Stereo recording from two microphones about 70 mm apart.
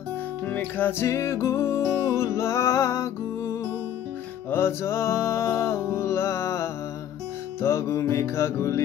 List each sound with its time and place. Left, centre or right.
0.5 s music: left
1.0 s music: left